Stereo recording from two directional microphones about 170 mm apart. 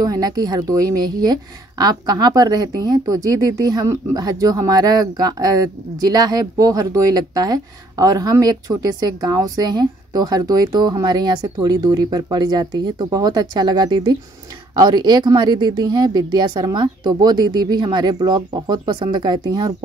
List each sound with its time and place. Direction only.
0.0 s a woman's voice: 20° right (ahead or behind)